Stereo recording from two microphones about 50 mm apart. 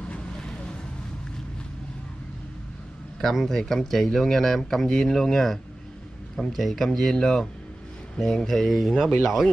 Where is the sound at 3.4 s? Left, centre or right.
Centre.